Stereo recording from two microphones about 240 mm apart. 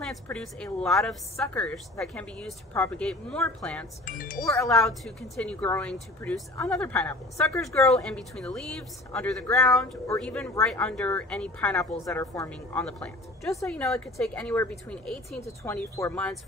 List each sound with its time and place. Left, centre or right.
0.0 s a woman's voice: centre
4.0 s speech: left
4.5 s a woman's voice: centre